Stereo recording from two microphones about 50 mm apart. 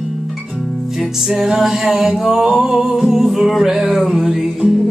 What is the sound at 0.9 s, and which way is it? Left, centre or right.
Music, centre.